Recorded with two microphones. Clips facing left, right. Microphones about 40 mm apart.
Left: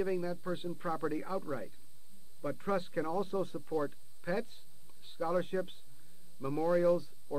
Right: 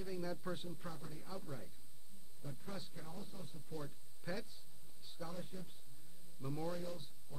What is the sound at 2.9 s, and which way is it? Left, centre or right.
Speech, left.